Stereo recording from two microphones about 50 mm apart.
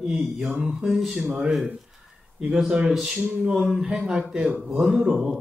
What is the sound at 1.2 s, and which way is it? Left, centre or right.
Mantra, right.